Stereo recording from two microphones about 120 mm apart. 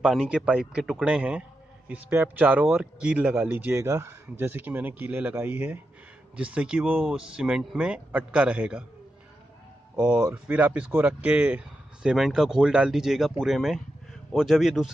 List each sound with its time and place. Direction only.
0.0 s speech: 5° right (ahead or behind)
9.9 s a man's voice: 10° right (ahead or behind)